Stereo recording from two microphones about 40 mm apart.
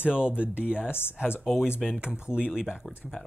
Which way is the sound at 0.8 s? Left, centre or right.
Left.